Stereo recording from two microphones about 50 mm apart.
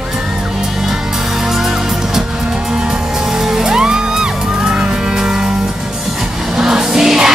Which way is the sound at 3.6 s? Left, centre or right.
Centre.